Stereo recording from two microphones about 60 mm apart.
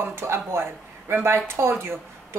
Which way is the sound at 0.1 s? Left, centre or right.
Right.